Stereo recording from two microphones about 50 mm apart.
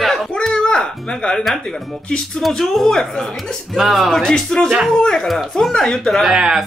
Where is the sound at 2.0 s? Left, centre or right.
Centre.